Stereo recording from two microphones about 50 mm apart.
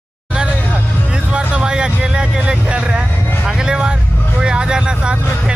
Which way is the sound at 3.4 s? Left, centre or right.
Centre.